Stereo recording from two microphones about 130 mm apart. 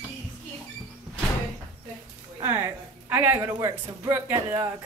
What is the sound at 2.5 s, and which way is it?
A woman's voice, 15° right (ahead or behind).